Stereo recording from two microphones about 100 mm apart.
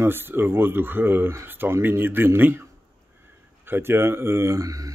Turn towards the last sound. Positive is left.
turn(degrees=-35)  # may be behind; listen again after turning